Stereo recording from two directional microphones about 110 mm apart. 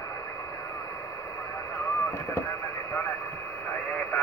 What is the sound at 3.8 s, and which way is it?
Radio, 15° left (ahead or behind).